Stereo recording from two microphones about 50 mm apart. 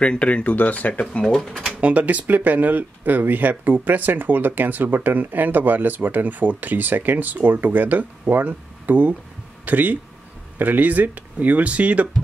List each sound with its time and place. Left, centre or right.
0.0 s speech: left
1.7 s speech: right